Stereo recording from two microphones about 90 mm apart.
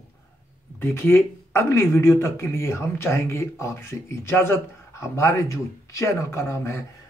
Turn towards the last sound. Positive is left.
turn(degrees=35)  # may be behind; listen again after turning